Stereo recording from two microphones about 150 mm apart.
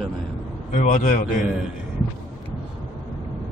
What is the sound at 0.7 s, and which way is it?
Speech, 60° left (ahead or behind).